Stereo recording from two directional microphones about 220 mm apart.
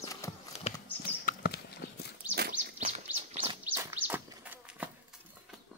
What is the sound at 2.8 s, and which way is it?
Bird, 30° right (ahead or behind).